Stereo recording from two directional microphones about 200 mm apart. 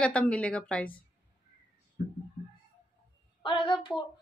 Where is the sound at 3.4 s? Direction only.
25° left (ahead or behind).